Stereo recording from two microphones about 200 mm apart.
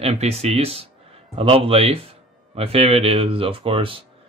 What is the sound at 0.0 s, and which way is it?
Speech, 30° right (ahead or behind).